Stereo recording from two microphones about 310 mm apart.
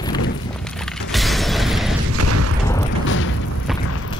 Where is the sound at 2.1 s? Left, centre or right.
Right.